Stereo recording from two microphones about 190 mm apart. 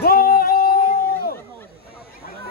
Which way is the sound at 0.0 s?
50° left (ahead or behind).